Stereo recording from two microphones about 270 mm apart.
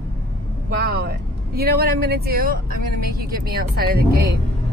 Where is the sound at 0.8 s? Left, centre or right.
Right.